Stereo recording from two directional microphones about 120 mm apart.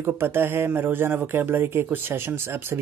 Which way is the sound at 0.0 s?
20° right (ahead or behind).